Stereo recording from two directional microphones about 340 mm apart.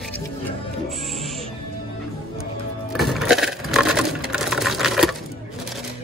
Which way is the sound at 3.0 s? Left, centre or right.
Centre.